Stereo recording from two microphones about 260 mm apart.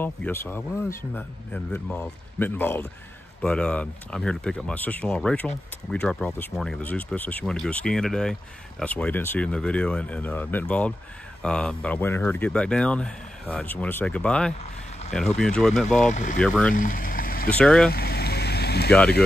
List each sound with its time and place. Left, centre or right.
0.0 s speech: centre
16.1 s speech: left
16.3 s speech: centre
16.7 s a sound: left
17.6 s speech: centre
17.9 s vehicle: left